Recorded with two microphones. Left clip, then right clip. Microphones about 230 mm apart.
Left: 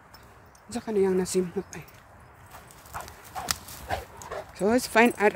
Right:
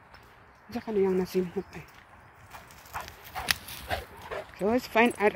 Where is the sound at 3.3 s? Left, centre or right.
Right.